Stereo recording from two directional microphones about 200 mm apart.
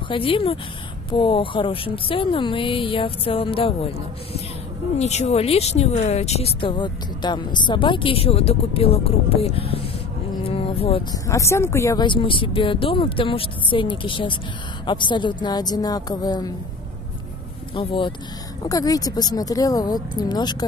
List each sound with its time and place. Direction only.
0.1 s a woman's voice: 25° left (ahead or behind)
10.4 s music: 30° left (ahead or behind)
11.2 s a woman's voice: 15° left (ahead or behind)
17.7 s a woman's voice: 25° left (ahead or behind)